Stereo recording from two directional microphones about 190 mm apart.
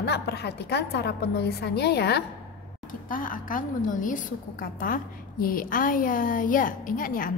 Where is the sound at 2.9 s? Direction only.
45° left (ahead or behind).